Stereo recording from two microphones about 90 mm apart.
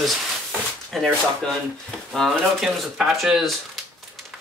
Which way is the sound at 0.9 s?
5° left (ahead or behind).